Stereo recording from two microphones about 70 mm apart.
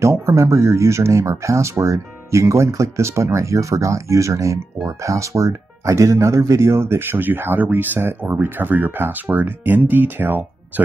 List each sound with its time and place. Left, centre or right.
0.0 s speech: right